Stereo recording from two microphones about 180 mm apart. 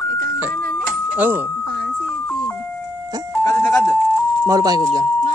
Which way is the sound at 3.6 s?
Centre (ahead or behind).